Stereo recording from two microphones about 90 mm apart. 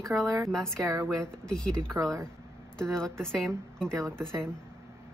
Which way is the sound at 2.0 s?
35° right (ahead or behind).